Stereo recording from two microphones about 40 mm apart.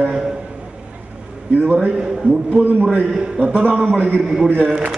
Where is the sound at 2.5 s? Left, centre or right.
Right.